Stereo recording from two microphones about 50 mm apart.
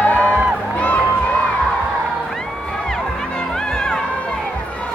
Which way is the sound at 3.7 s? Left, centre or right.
Centre.